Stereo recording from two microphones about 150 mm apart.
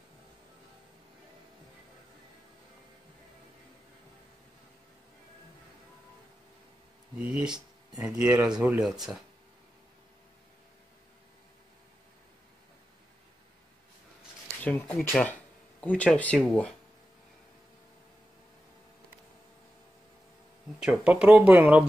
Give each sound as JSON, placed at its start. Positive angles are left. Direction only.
{"t": 7.2, "sound": "speech", "side_deg": -5}
{"t": 14.6, "sound": "speech", "side_deg": 10}
{"t": 20.8, "sound": "speech", "side_deg": -5}